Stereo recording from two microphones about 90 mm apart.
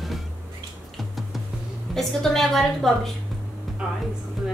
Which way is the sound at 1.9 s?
5° left (ahead or behind).